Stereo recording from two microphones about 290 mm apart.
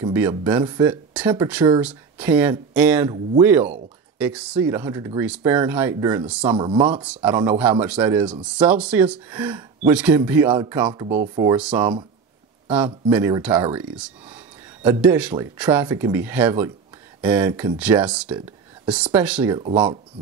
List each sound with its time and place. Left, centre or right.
0.0 s speech: centre
6.5 s speech: centre
6.9 s speech: centre